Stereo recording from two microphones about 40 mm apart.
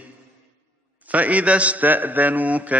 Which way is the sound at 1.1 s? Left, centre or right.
Right.